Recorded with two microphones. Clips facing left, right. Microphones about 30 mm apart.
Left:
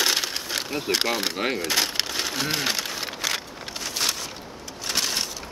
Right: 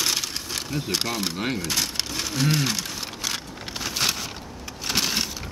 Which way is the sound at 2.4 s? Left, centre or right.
Centre.